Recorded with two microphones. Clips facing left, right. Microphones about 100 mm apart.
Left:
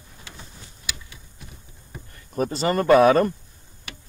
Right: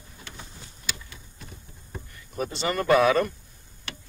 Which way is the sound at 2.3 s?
40° left (ahead or behind).